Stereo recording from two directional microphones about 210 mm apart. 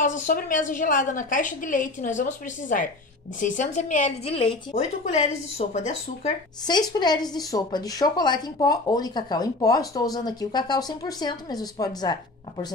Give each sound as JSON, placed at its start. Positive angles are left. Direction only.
{"t": 0.0, "sound": "a woman's voice", "side_deg": 40}
{"t": 6.6, "sound": "a woman's voice", "side_deg": 20}